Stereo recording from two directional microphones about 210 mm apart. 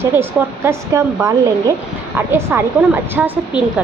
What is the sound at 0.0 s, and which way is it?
A woman's voice, 10° right (ahead or behind).